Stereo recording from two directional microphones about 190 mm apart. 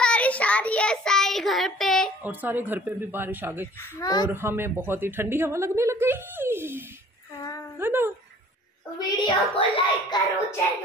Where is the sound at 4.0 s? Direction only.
20° left (ahead or behind).